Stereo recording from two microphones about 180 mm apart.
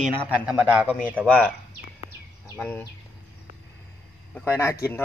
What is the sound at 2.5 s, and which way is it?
Speech, 10° left (ahead or behind).